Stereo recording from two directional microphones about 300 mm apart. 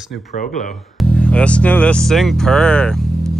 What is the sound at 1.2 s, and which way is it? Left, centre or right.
Speech, centre.